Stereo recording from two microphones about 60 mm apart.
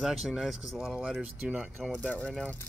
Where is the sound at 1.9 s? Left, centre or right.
Centre.